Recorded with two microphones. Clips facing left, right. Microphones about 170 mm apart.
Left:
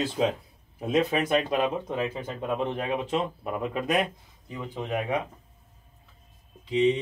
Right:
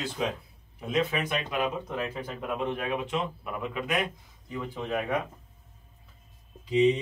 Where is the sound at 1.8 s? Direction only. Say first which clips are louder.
Left 3 dB; 25° left (ahead or behind); by 3.9 s 40° left (ahead or behind).